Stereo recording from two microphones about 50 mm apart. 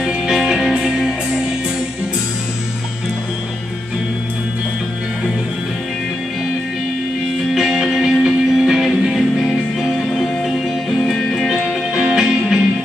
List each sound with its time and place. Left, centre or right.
0.4 s music: centre
7.5 s music: centre